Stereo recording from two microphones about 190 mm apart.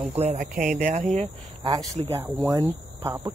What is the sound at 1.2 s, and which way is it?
Speech, 25° right (ahead or behind).